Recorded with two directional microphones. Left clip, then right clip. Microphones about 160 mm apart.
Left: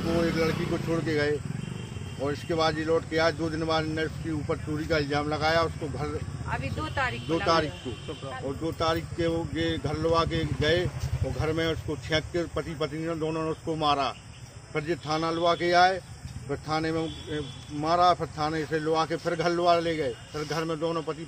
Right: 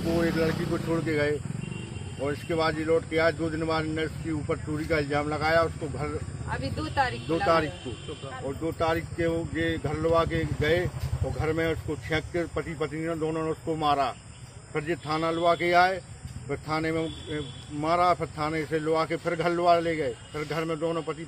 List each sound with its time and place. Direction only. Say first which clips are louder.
0.2 s speech: left 1 dB; 5° left (ahead or behind)
6.5 s speech: right 1 dB; 65° right (ahead or behind)
7.4 s speech: right 1 dB; 15° left (ahead or behind)